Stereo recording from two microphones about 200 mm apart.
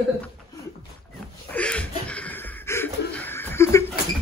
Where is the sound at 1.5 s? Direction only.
5° left (ahead or behind).